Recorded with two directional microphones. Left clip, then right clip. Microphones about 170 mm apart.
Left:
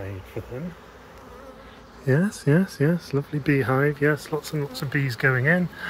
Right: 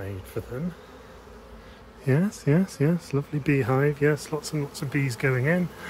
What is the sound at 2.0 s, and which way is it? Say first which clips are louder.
Speech: left 2 dB; 5° right (ahead or behind).